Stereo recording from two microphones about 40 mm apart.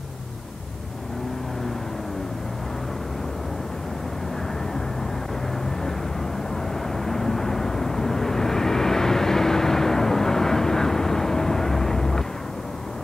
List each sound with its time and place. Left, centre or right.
7.1 s vehicle: centre